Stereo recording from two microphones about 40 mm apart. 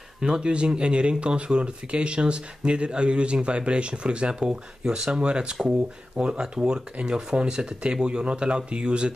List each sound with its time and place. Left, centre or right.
0.2 s speech: centre